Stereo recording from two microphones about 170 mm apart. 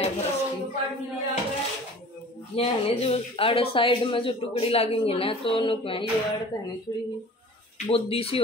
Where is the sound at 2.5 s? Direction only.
35° left (ahead or behind).